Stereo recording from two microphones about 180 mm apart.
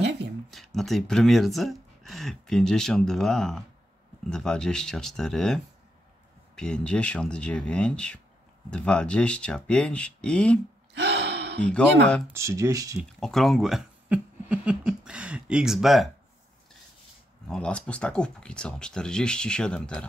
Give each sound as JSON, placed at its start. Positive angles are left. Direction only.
{"t": 0.5, "sound": "speech", "side_deg": 0}
{"t": 11.0, "sound": "gasp", "side_deg": -75}
{"t": 11.6, "sound": "speech", "side_deg": 5}
{"t": 12.3, "sound": "speech", "side_deg": -15}
{"t": 13.2, "sound": "speech", "side_deg": 0}
{"t": 17.5, "sound": "speech", "side_deg": 5}